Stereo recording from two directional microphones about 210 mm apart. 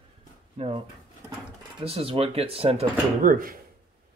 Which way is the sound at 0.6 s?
30° right (ahead or behind).